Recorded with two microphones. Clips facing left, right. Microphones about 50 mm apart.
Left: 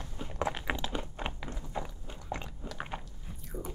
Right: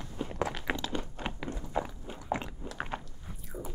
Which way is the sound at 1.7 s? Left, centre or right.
Centre.